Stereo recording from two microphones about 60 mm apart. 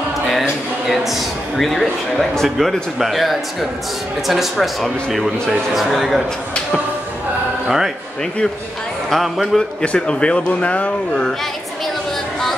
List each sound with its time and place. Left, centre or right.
0.3 s a man's voice: centre
5.8 s a man's voice: centre
7.6 s speech: centre
9.1 s a man's voice: centre
9.8 s speech: centre